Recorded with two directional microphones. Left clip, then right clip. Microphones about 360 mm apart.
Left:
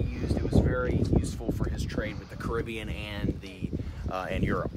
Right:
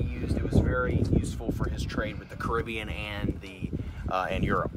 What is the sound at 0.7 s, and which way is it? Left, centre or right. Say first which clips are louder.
Speech: right 1 dB; centre.